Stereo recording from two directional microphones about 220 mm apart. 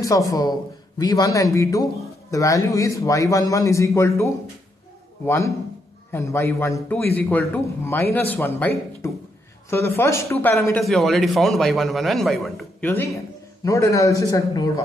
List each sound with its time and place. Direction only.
0.0 s a man's voice: 15° left (ahead or behind)
5.2 s a man's voice: 10° left (ahead or behind)